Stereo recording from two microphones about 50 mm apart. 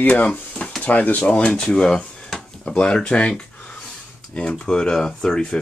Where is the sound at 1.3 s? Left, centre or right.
Centre.